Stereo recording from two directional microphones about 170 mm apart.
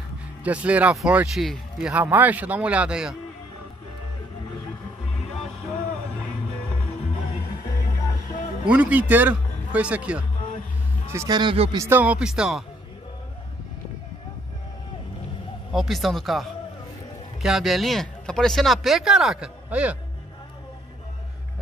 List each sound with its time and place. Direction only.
0.4 s speech: 10° right (ahead or behind)
5.1 s music: centre (ahead or behind)
8.6 s speech: 10° right (ahead or behind)
11.1 s speech: 25° right (ahead or behind)
11.7 s speech: 15° right (ahead or behind)
15.7 s speech: centre (ahead or behind)